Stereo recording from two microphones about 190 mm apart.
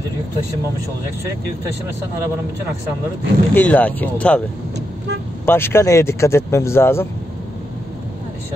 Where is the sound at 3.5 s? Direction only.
10° left (ahead or behind).